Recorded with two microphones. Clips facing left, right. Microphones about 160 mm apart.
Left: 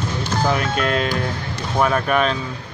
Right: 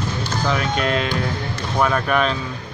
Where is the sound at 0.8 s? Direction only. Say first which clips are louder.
Left 1 dB; 45° left (ahead or behind).